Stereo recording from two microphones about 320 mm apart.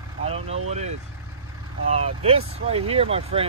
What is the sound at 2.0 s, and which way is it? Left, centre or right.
Speech, centre.